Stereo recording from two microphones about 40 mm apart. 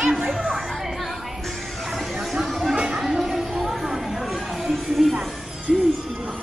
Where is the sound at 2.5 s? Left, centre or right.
Centre.